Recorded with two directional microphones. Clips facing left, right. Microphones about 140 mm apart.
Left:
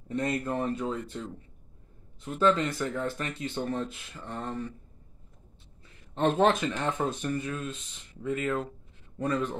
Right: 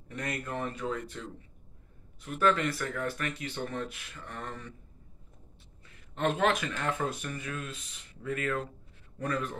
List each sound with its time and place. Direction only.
0.1 s speech: 25° left (ahead or behind)
2.2 s speech: 25° left (ahead or behind)
6.1 s speech: 25° left (ahead or behind)